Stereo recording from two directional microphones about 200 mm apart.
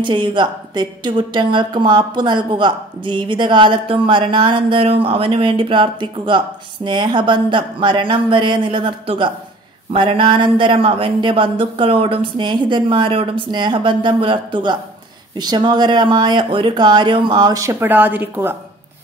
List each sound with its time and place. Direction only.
0.0 s speech: 25° right (ahead or behind)